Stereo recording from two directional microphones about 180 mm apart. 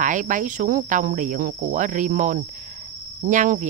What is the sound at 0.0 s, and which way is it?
Speech, 45° right (ahead or behind).